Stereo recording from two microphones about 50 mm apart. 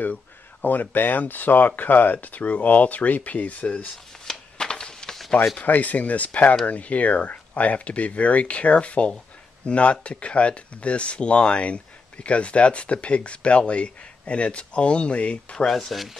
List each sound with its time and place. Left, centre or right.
0.0 s speech: left
4.3 s a sound: centre
5.6 s speech: left
15.5 s speech: centre